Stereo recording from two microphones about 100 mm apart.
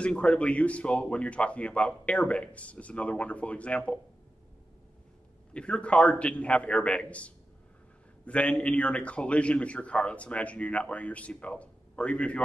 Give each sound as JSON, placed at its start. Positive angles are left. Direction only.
{"t": 0.0, "sound": "a man's voice", "side_deg": 10}
{"t": 5.5, "sound": "a man's voice", "side_deg": 10}